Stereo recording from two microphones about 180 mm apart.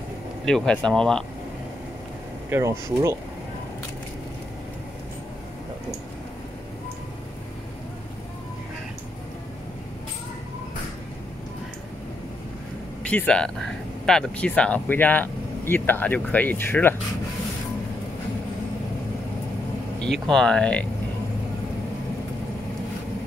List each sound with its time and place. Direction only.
0.5 s speech: 5° left (ahead or behind)
2.5 s speech: 15° right (ahead or behind)
13.0 s speech: 5° left (ahead or behind)
20.0 s speech: 5° left (ahead or behind)